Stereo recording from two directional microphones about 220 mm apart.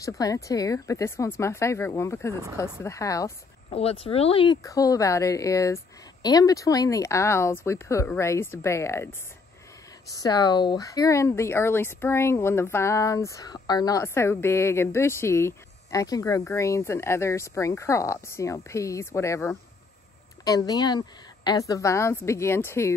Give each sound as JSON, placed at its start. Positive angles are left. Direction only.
{"t": 0.0, "sound": "speech", "side_deg": 15}
{"t": 3.7, "sound": "speech", "side_deg": 25}
{"t": 10.2, "sound": "speech", "side_deg": 20}